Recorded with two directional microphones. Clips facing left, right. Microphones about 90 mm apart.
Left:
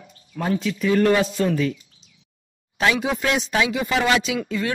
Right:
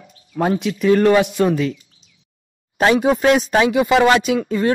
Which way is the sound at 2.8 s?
45° right (ahead or behind).